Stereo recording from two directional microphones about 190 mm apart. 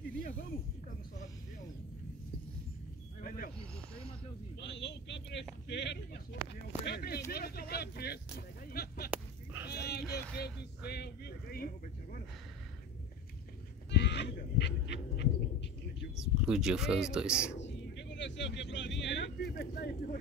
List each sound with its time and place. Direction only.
0.4 s a sound: 50° left (ahead or behind)
3.2 s snake: 50° left (ahead or behind)
3.5 s snake: 5° left (ahead or behind)
4.6 s a sound: 70° left (ahead or behind)
9.1 s chicken: 10° right (ahead or behind)
9.7 s a sound: 55° left (ahead or behind)
13.8 s goat: 65° left (ahead or behind)
16.4 s speech: 5° right (ahead or behind)
17.6 s vehicle: 70° left (ahead or behind); by 20.2 s 50° left (ahead or behind)